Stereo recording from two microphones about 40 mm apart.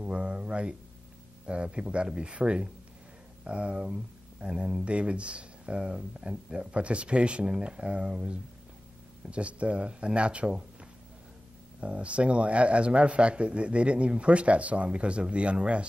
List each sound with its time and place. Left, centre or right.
0.0 s speech: right